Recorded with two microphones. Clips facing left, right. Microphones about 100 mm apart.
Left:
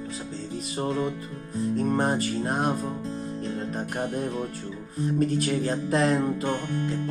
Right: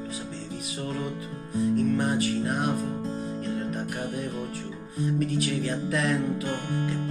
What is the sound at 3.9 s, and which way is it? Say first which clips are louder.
Speech: left 3 dB; 40° left (ahead or behind).